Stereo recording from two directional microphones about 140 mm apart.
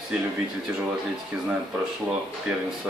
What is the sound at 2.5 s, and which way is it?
Speech, 10° right (ahead or behind).